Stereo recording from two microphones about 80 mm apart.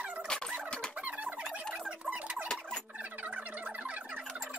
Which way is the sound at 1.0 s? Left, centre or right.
Centre.